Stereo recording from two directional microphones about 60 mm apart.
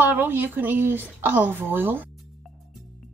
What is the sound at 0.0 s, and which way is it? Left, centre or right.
Speech, right.